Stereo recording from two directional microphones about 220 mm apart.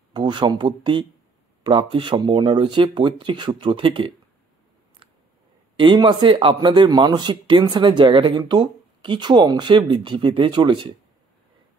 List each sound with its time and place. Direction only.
0.1 s speech: 20° right (ahead or behind)
5.8 s speech: 20° right (ahead or behind)